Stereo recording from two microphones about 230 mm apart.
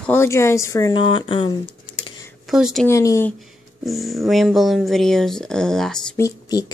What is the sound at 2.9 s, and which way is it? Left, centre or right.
Speech, centre.